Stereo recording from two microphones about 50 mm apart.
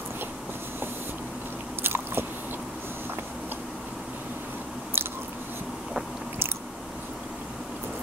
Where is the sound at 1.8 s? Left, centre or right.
Right.